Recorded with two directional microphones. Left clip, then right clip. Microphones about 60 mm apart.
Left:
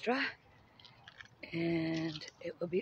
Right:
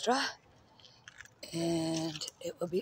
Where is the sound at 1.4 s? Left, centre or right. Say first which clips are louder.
Right 2 dB; right.